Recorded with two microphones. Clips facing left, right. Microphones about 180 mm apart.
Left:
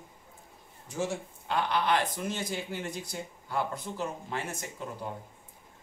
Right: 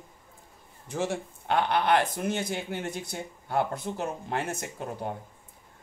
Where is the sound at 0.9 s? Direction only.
65° right (ahead or behind).